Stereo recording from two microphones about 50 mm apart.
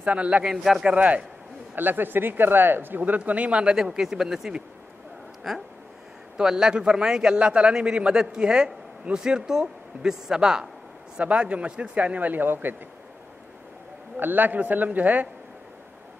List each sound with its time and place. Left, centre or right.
0.0 s a man's voice: right
0.4 s a man's voice: centre
0.8 s a man's voice: right
1.8 s speech: right
3.2 s a man's voice: right
3.7 s a man's voice: centre
6.3 s a man's voice: centre; by 12.7 s right
14.1 s a man's voice: right